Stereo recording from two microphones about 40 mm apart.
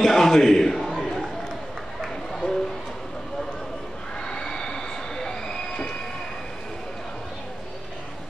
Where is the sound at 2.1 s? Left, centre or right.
Centre.